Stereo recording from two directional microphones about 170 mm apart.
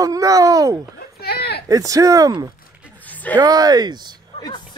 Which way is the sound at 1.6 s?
20° right (ahead or behind).